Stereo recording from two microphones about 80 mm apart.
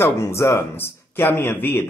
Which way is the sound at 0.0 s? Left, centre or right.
Left.